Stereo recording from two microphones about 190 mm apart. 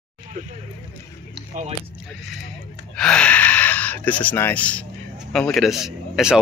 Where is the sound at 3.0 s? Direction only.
5° left (ahead or behind).